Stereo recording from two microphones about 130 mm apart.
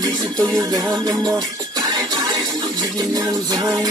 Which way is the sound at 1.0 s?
30° right (ahead or behind).